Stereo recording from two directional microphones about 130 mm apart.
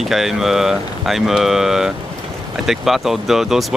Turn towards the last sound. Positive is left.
turn(degrees=0)  # may be behind; listen again after turning